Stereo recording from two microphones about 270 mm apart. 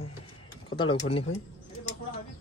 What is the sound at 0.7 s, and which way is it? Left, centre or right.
Pigeon, centre.